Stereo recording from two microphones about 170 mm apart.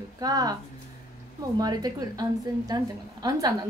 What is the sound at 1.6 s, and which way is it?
Speech, 25° right (ahead or behind).